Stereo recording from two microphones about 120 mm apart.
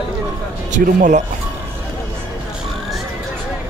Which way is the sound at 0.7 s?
90° right.